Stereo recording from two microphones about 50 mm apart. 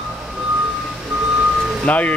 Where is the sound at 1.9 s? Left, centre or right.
Left.